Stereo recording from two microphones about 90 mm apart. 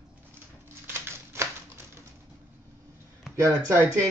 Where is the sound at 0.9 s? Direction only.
30° right (ahead or behind).